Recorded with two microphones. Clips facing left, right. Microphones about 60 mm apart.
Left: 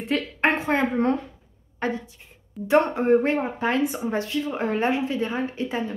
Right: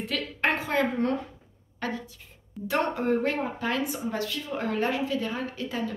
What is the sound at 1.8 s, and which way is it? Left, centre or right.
A woman's voice, left.